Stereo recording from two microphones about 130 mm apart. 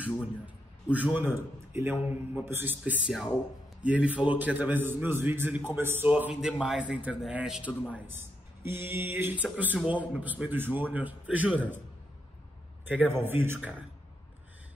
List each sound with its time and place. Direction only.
0.8 s a man's voice: 10° right (ahead or behind)
7.9 s a man's voice: 15° right (ahead or behind)
12.8 s a man's voice: 15° right (ahead or behind)